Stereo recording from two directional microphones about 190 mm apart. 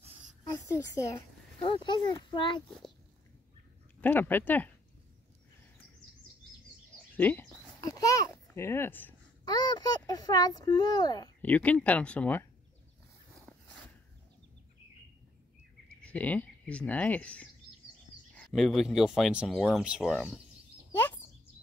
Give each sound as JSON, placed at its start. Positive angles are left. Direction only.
{"t": 0.7, "sound": "speech", "side_deg": 15}
{"t": 1.6, "sound": "speech", "side_deg": 25}
{"t": 4.0, "sound": "speech", "side_deg": 10}
{"t": 7.2, "sound": "a child's voice", "side_deg": 10}
{"t": 9.4, "sound": "speech", "side_deg": 20}
{"t": 11.4, "sound": "speech", "side_deg": 10}
{"t": 16.0, "sound": "speech", "side_deg": 10}
{"t": 20.9, "sound": "bird", "side_deg": 10}